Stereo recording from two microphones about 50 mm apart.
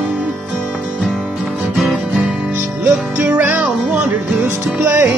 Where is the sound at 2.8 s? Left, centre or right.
Right.